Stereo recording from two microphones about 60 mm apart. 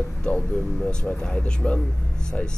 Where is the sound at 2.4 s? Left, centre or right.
Left.